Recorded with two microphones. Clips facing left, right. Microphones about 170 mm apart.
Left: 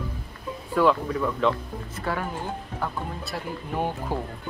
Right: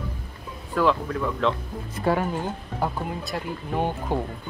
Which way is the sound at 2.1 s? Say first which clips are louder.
Right 6 dB; 15° right (ahead or behind).